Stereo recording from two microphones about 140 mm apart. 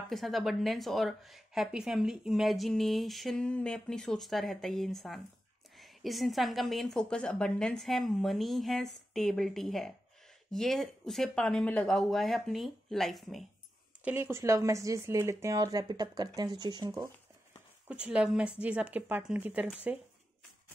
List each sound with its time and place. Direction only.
0.1 s a woman's voice: centre (ahead or behind)
14.0 s speech: 15° right (ahead or behind)
17.8 s speech: 5° right (ahead or behind)